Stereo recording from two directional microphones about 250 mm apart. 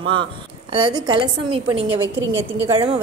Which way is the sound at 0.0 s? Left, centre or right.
Centre.